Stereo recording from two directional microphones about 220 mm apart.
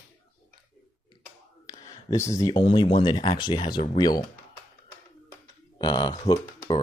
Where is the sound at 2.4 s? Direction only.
25° left (ahead or behind).